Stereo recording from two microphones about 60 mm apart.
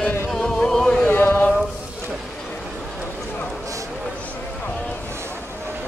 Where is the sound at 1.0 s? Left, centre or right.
Left.